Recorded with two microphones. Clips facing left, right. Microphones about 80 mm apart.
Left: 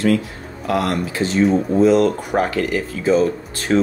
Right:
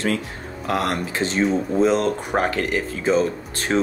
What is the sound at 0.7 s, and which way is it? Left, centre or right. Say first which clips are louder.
Speech: left 3 dB; right.